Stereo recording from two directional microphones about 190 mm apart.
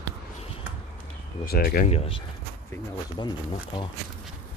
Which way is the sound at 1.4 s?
50° left (ahead or behind).